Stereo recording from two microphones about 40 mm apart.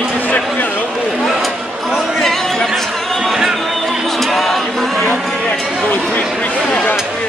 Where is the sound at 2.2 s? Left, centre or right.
Centre.